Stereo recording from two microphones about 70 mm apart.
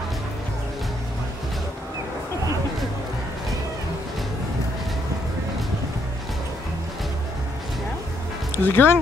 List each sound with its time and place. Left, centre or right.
8.6 s speech: left